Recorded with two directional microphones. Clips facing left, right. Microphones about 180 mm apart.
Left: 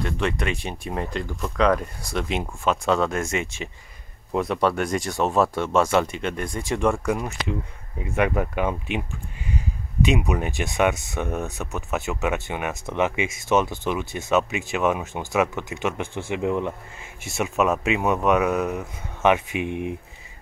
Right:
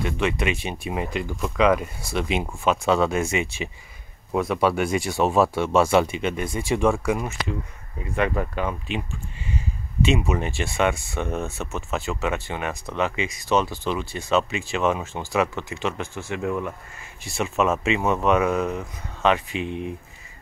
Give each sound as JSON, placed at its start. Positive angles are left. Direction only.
{"t": 0.0, "sound": "speech", "side_deg": -10}
{"t": 4.3, "sound": "speech", "side_deg": 0}
{"t": 8.0, "sound": "speech", "side_deg": 10}
{"t": 10.0, "sound": "speech", "side_deg": 15}
{"t": 17.4, "sound": "speech", "side_deg": 5}